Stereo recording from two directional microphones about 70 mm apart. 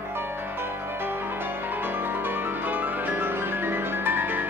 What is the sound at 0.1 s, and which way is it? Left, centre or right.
Music, right.